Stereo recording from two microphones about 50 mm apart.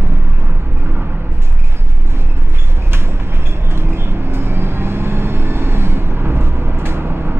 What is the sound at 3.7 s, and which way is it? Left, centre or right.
Vehicle, right.